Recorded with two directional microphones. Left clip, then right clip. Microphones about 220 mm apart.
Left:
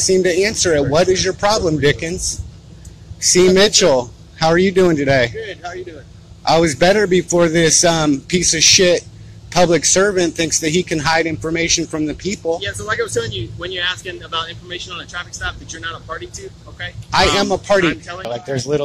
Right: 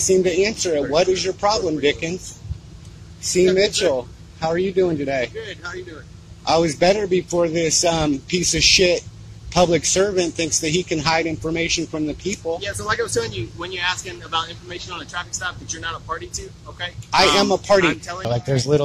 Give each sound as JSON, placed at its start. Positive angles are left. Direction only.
{"t": 0.0, "sound": "speech", "side_deg": 15}
{"t": 3.3, "sound": "speech", "side_deg": 20}
{"t": 5.4, "sound": "speech", "side_deg": 5}
{"t": 12.5, "sound": "speech", "side_deg": -10}
{"t": 17.4, "sound": "speech", "side_deg": 5}
{"t": 18.0, "sound": "speech", "side_deg": -5}